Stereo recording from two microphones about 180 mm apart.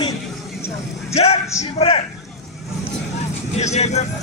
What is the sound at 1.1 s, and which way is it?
Speech, 35° left (ahead or behind).